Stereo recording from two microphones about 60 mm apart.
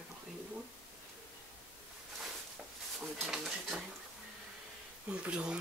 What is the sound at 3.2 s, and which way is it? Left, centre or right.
Speech, centre.